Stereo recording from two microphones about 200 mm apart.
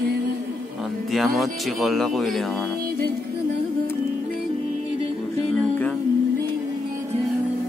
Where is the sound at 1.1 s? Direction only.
Centre (ahead or behind).